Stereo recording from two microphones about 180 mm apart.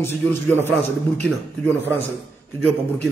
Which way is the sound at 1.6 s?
10° left (ahead or behind).